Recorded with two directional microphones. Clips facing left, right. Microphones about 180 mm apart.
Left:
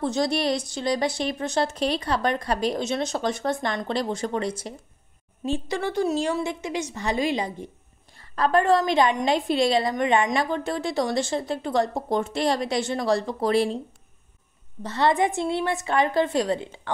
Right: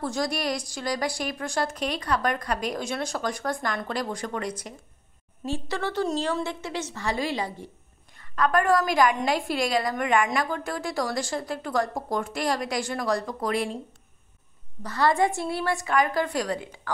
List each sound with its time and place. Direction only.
0.0 s a woman's voice: 25° left (ahead or behind)
5.4 s a woman's voice: 15° left (ahead or behind)
8.2 s a woman's voice: 30° left (ahead or behind)
14.8 s a woman's voice: 25° left (ahead or behind)